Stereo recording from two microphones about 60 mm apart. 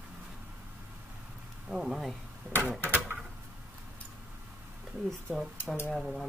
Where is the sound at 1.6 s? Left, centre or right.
Centre.